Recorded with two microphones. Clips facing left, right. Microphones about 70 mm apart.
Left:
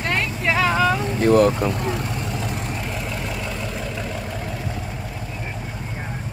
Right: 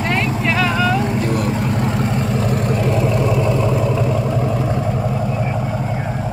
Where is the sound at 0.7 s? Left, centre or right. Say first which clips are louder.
Right 1 dB; left.